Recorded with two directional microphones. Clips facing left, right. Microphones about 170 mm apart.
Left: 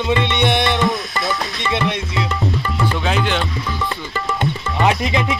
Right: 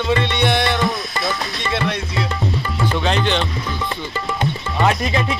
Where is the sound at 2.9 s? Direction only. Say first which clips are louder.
Right 3 dB; 5° left (ahead or behind).